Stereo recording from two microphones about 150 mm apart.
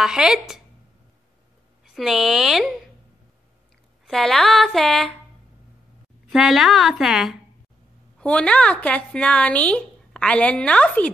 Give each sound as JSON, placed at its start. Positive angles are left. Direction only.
{"t": 0.0, "sound": "speech", "side_deg": -5}
{"t": 2.0, "sound": "speech", "side_deg": 0}
{"t": 4.0, "sound": "speech", "side_deg": 0}
{"t": 6.3, "sound": "a woman's voice", "side_deg": 0}